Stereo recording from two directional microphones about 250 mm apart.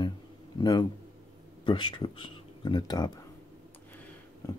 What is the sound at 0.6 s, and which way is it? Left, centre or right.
A man's voice, centre.